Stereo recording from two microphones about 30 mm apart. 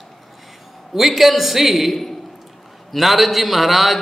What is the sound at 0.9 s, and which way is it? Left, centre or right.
A man's voice, centre.